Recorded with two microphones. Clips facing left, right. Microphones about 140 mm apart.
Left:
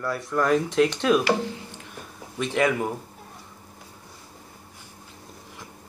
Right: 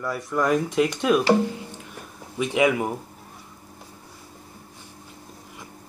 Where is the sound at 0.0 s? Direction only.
5° right (ahead or behind).